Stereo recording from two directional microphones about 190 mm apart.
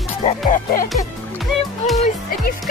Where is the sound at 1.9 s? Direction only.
45° left (ahead or behind).